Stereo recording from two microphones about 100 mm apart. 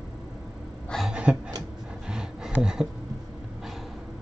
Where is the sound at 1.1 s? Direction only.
10° right (ahead or behind).